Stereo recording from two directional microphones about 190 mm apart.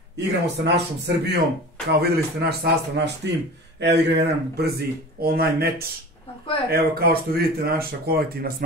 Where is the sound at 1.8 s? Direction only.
55° right (ahead or behind).